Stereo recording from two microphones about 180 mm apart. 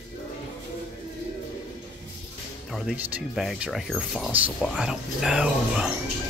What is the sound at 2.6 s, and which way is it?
Speech, centre (ahead or behind).